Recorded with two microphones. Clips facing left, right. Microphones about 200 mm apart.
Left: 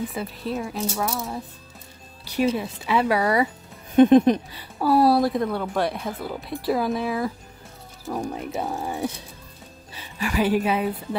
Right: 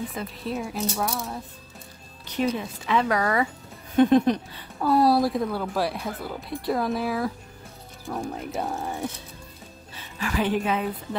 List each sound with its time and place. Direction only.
0.1 s speech: 5° left (ahead or behind)
3.9 s music: 20° left (ahead or behind)
4.7 s speech: 5° left (ahead or behind)
9.9 s a woman's voice: 10° left (ahead or behind)